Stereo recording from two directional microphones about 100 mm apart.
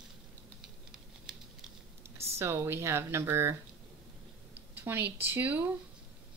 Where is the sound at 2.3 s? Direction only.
25° right (ahead or behind).